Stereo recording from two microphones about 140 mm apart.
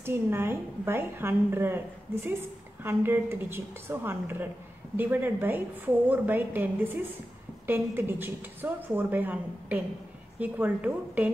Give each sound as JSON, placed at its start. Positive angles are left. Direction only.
{"t": 0.0, "sound": "a woman's voice", "side_deg": -15}